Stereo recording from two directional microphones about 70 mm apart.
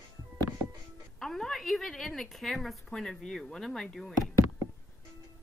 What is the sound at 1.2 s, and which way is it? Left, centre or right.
A woman's voice, centre.